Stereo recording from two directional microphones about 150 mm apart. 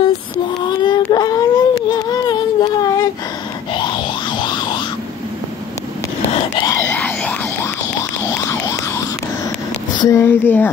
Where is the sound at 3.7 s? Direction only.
35° left (ahead or behind).